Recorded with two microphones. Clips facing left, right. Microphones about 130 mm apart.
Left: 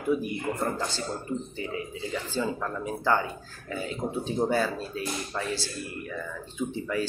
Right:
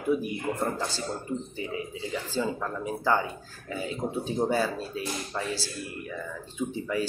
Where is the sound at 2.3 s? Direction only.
10° right (ahead or behind).